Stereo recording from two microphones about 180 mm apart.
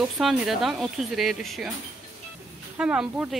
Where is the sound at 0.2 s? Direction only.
Centre (ahead or behind).